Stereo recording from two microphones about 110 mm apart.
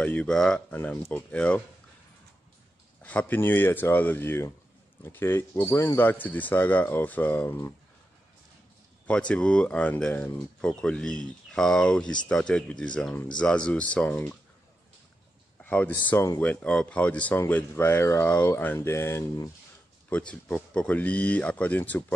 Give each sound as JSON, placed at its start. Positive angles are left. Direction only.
{"t": 0.0, "sound": "speech", "side_deg": 10}
{"t": 3.0, "sound": "speech", "side_deg": 15}
{"t": 9.0, "sound": "speech", "side_deg": 10}
{"t": 15.6, "sound": "a sound", "side_deg": 15}
{"t": 16.1, "sound": "speech", "side_deg": 20}
{"t": 20.1, "sound": "speech", "side_deg": 10}